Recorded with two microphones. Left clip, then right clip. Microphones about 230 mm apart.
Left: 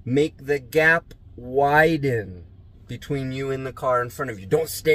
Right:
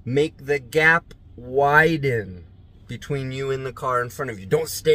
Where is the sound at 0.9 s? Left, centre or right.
Centre.